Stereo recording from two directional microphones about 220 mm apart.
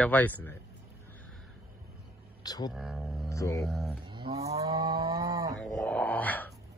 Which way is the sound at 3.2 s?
15° left (ahead or behind).